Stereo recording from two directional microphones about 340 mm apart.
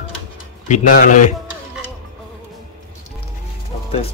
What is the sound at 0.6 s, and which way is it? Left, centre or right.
Speech, left.